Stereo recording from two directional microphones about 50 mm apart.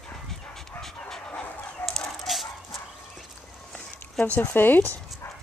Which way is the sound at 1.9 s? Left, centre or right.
Centre.